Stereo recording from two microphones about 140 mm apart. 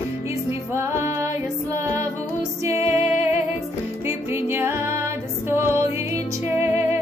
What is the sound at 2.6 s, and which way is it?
Music, 20° right (ahead or behind).